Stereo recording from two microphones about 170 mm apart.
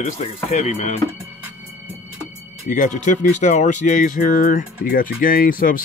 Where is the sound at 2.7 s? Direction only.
50° left (ahead or behind).